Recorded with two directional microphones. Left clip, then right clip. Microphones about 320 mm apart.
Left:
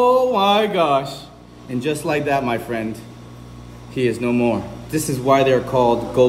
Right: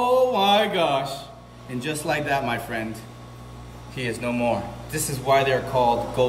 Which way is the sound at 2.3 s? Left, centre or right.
Centre.